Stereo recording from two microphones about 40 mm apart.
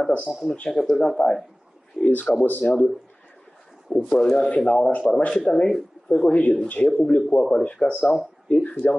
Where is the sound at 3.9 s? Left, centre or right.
Left.